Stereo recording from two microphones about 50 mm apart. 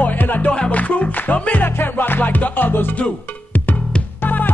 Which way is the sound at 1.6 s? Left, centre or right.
Left.